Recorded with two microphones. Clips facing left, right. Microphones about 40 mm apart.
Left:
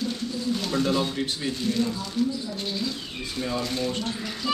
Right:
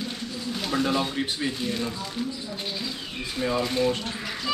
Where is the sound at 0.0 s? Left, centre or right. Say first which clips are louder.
Left 4 dB; centre.